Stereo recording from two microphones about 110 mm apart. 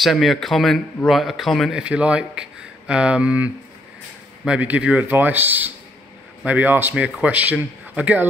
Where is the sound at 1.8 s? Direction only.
10° right (ahead or behind).